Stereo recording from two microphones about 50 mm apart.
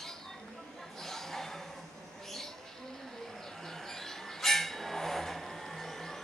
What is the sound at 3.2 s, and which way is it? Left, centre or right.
Bird, centre.